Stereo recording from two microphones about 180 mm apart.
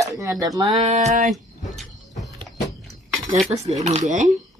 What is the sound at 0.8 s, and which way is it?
Speech, 40° right (ahead or behind).